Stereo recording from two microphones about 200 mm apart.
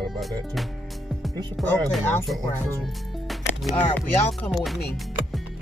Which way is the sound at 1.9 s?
Centre (ahead or behind).